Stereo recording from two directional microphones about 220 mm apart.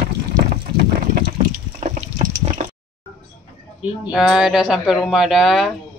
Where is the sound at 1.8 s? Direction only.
30° right (ahead or behind).